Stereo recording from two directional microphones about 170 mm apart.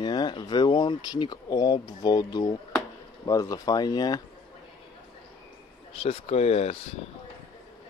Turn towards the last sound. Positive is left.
turn(degrees=35)  # may be behind; listen again after turning